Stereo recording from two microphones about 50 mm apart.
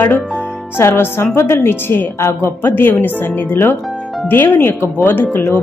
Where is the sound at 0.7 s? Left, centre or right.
Left.